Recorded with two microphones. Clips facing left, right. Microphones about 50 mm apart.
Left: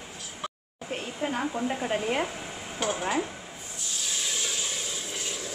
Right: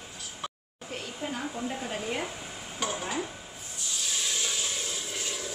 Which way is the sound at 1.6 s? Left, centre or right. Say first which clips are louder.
Left 5 dB; left.